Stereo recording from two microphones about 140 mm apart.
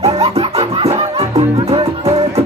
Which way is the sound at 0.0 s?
45° right (ahead or behind).